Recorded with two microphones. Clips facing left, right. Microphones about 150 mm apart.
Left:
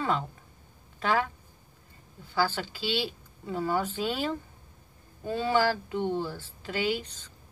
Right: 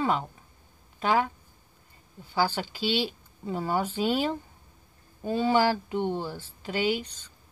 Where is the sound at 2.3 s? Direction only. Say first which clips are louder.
Right 1 dB; 15° right (ahead or behind).